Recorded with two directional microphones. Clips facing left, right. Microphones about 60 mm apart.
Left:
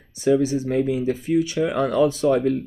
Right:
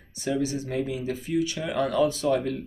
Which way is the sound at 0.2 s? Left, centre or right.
Left.